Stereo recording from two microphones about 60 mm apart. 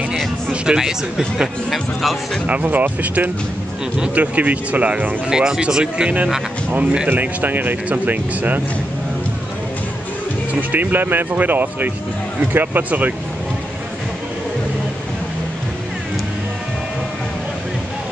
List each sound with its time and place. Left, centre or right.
0.5 s speech: centre
1.7 s speech: centre
2.4 s speech: right
5.3 s speech: centre
7.1 s speech: right
10.5 s speech: right